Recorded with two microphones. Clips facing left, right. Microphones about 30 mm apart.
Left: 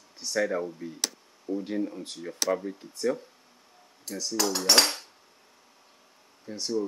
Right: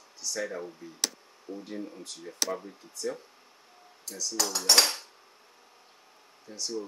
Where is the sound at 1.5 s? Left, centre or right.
Left.